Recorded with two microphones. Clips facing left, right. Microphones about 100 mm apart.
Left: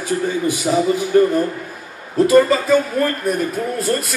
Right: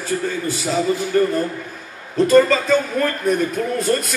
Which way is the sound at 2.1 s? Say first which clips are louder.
Left 1 dB; 10° left (ahead or behind).